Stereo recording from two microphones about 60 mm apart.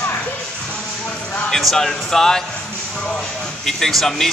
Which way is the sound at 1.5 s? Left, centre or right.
Centre.